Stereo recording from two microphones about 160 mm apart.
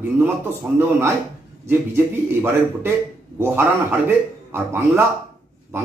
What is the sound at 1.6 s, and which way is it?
A man's voice, 15° right (ahead or behind).